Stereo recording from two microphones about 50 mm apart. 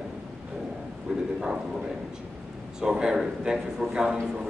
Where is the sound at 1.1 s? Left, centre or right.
Centre.